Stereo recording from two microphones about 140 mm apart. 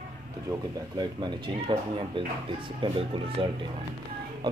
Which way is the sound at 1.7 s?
35° right (ahead or behind).